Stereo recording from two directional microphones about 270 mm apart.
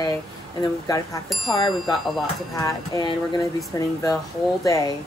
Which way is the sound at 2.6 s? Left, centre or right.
Centre.